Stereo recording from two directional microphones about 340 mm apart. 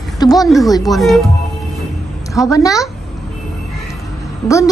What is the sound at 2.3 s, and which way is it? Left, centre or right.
Speech, centre.